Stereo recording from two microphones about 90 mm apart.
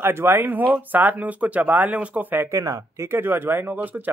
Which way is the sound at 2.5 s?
35° right (ahead or behind).